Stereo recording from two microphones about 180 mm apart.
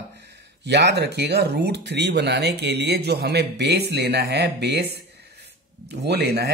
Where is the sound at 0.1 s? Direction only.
70° right (ahead or behind).